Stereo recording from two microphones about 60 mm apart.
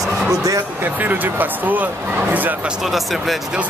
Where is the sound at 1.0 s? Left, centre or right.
Right.